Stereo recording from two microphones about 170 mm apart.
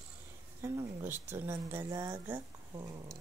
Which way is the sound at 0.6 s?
15° right (ahead or behind).